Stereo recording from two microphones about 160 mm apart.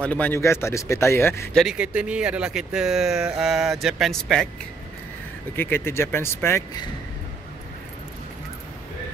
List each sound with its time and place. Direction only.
0.0 s speech: 10° left (ahead or behind)
1.5 s speech: centre (ahead or behind)
5.6 s speech: 15° left (ahead or behind)